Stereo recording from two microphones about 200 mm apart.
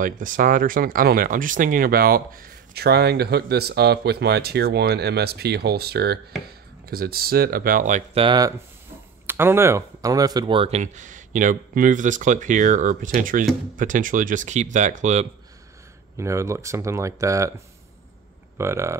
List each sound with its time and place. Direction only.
0.0 s speech: 40° right (ahead or behind)
16.2 s speech: 15° right (ahead or behind)
18.6 s speech: 15° right (ahead or behind)